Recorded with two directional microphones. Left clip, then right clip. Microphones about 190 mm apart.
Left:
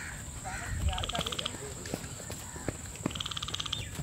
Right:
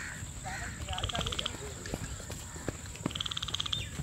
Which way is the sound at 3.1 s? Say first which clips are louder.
Right 2 dB; 40° left (ahead or behind).